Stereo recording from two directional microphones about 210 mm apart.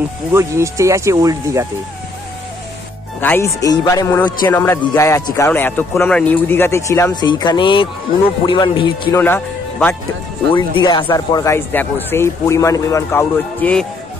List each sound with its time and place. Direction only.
0.3 s speech: 15° right (ahead or behind)
3.2 s a man's voice: 10° left (ahead or behind)
9.2 s speech: 10° left (ahead or behind)
10.5 s a man's voice: 25° left (ahead or behind); by 13.8 s 5° left (ahead or behind)